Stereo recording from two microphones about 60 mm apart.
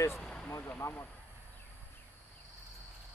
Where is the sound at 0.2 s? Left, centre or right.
Centre.